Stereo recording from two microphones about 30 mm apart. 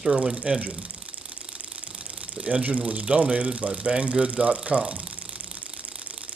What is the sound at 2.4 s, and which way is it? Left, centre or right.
Speech, right.